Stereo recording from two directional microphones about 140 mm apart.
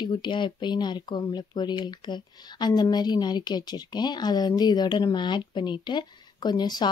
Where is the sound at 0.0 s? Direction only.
35° left (ahead or behind).